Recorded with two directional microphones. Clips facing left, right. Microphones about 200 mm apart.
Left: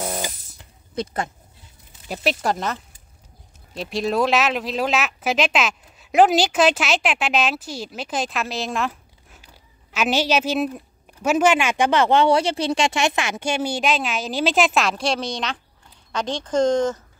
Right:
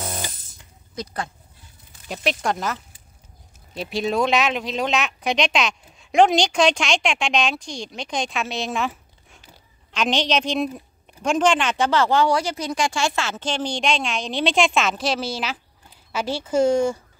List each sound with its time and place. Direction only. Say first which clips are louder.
0.0 s electric toothbrush: left 4 dB; 10° left (ahead or behind)
0.9 s speech: left 4 dB; 20° left (ahead or behind)
2.0 s a woman's voice: left 1 dB; 5° left (ahead or behind)